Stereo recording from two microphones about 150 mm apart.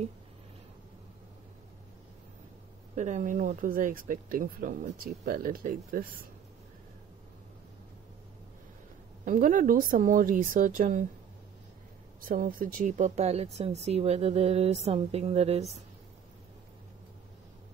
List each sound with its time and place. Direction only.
3.0 s speech: 55° right (ahead or behind)
9.2 s speech: 60° right (ahead or behind)
12.2 s speech: 70° right (ahead or behind); by 15.6 s 45° right (ahead or behind)